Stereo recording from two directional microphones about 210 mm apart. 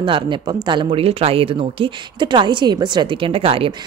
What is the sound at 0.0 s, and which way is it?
A woman's voice, 25° right (ahead or behind).